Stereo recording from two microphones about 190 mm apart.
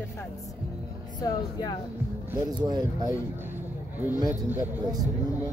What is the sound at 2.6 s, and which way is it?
Speech, 20° right (ahead or behind).